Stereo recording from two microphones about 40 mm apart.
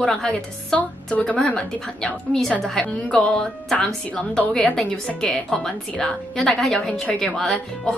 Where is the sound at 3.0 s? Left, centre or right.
Left.